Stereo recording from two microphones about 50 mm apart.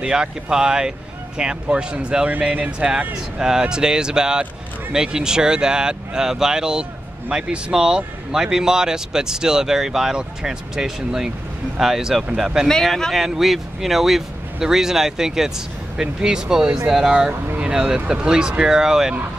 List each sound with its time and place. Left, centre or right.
0.0 s speech: centre
3.3 s speech: centre
12.6 s speech: centre
16.6 s speech: right